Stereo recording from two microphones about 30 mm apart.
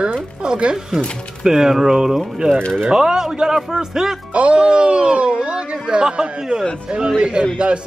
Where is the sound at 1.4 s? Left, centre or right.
Centre.